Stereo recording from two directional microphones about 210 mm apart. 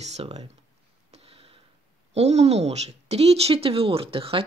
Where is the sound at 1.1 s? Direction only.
30° right (ahead or behind).